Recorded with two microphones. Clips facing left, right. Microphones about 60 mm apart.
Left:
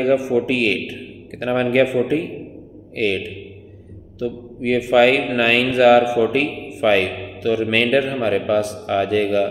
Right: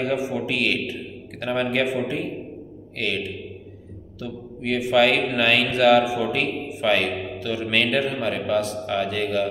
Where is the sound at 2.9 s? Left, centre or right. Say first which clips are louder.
Left 6 dB; left.